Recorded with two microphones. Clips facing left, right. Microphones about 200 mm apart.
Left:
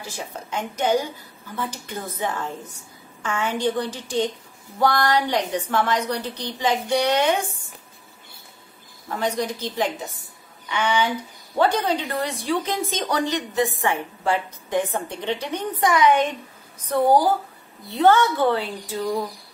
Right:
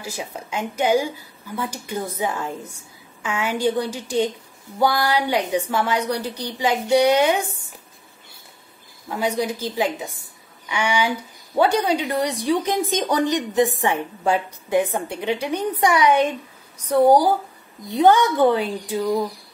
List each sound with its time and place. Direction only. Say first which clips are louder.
0.0 s a woman's voice: right 2 dB; 10° right (ahead or behind)
9.1 s a woman's voice: right 2 dB; 10° right (ahead or behind)